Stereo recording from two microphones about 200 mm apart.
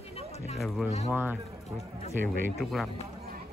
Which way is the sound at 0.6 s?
Centre (ahead or behind).